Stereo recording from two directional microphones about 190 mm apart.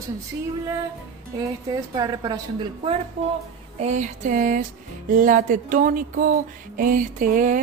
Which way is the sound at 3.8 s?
40° right (ahead or behind).